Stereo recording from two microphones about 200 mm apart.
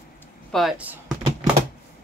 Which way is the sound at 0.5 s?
5° right (ahead or behind).